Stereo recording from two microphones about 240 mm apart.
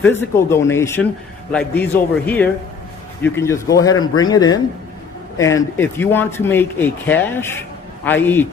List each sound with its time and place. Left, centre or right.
0.0 s speech: centre